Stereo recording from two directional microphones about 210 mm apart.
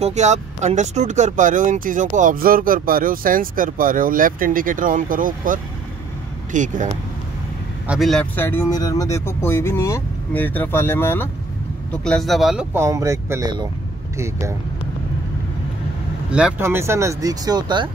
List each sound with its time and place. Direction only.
0.0 s speech: 35° right (ahead or behind)
7.8 s speech: 5° right (ahead or behind)
12.7 s speech: 15° right (ahead or behind)
16.3 s speech: 5° right (ahead or behind); by 17.8 s 20° right (ahead or behind)